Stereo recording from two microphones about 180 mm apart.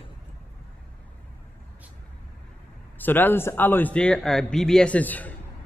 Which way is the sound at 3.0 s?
10° left (ahead or behind).